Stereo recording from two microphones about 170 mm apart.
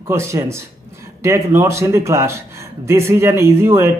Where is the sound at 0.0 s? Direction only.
15° right (ahead or behind).